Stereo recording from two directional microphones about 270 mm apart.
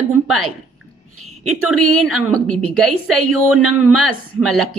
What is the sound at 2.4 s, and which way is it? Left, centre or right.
A woman's voice, right.